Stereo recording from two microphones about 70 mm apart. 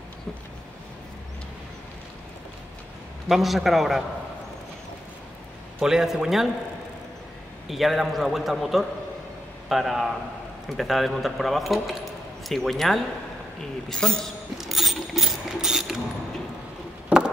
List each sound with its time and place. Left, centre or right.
3.3 s a man's voice: centre
5.8 s a man's voice: centre
7.6 s a man's voice: centre
14.6 s mechanisms: centre
17.1 s a sound: centre